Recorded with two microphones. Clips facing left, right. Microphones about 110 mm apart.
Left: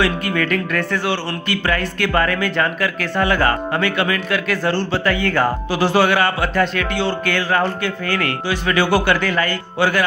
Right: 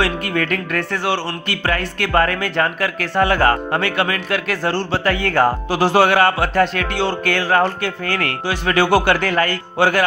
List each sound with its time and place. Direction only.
0.0 s a man's voice: 40° right (ahead or behind)
0.7 s a man's voice: 30° right (ahead or behind)